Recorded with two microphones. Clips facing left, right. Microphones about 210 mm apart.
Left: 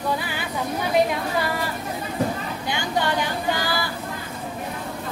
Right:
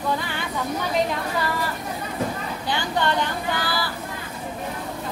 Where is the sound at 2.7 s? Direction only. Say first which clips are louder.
Even; 10° left (ahead or behind).